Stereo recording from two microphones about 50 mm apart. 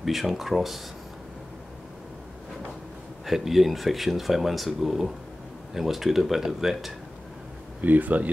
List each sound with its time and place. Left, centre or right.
0.0 s speech: centre
3.3 s speech: centre
7.8 s speech: right